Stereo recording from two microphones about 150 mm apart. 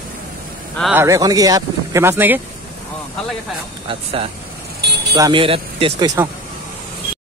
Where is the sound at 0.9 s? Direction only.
20° right (ahead or behind).